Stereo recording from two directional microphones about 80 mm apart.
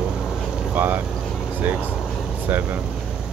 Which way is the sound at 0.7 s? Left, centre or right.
Right.